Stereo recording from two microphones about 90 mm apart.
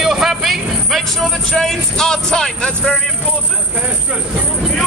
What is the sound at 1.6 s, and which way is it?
Speech, 5° left (ahead or behind).